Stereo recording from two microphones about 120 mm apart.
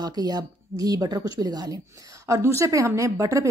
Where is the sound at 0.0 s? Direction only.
35° right (ahead or behind).